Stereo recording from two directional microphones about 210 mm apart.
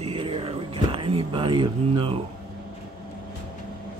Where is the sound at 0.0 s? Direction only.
25° right (ahead or behind).